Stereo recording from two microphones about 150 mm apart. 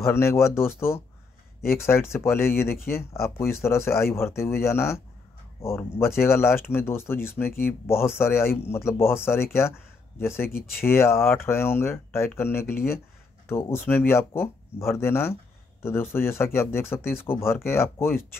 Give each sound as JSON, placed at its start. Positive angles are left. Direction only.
{"t": 0.0, "sound": "speech", "side_deg": 20}